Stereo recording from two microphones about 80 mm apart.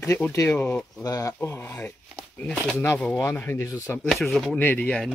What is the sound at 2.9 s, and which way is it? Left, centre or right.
Speech, centre.